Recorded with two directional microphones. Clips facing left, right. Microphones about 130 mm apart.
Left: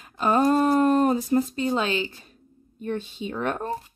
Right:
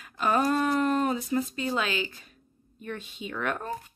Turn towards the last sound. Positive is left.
turn(degrees=30)  # may be behind; listen again after turning